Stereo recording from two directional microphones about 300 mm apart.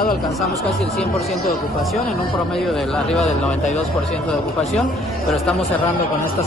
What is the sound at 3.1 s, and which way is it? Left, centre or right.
Speech, centre.